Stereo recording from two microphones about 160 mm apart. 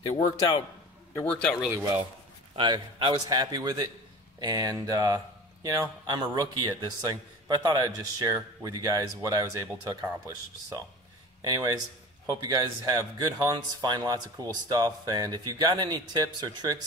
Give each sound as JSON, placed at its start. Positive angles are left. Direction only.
{"t": 0.1, "sound": "a man's voice", "side_deg": 30}
{"t": 1.1, "sound": "speech", "side_deg": 10}
{"t": 2.5, "sound": "speech", "side_deg": -30}
{"t": 11.4, "sound": "speech", "side_deg": -25}